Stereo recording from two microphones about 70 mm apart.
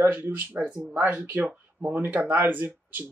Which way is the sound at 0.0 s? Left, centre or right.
Right.